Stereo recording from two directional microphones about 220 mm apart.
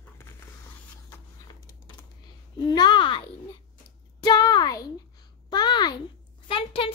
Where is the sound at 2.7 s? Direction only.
20° left (ahead or behind).